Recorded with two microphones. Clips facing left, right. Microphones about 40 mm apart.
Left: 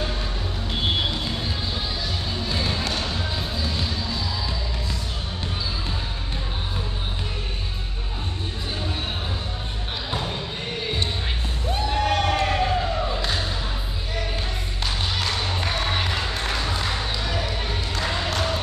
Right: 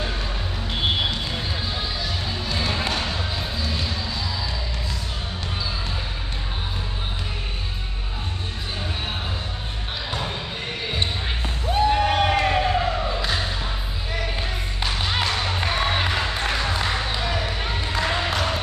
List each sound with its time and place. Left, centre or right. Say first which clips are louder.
0.7 s vehicle: right 1 dB; centre
2.4 s music: even; centre
2.7 s music: right 1 dB; centre
11.7 s a sound: right 4 dB; centre
14.8 s music: right 3 dB; centre
17.5 s a sound: right 2 dB; centre